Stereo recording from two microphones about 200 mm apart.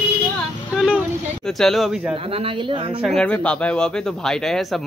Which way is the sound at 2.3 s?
25° right (ahead or behind).